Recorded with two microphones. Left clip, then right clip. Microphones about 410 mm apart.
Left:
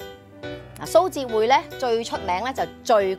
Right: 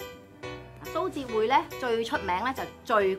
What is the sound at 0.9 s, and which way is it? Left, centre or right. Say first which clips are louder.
Speech: left 10 dB; left.